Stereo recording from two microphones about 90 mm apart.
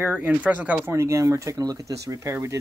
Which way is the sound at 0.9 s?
30° right (ahead or behind).